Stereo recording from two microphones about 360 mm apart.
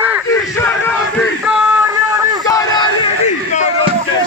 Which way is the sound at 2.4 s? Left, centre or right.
Centre.